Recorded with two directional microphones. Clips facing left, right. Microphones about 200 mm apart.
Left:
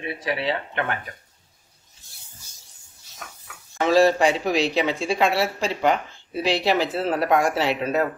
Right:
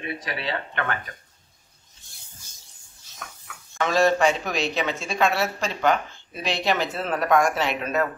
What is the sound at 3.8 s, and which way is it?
Speech, 35° left (ahead or behind).